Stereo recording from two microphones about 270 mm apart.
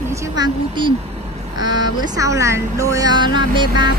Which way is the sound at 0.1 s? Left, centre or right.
Centre.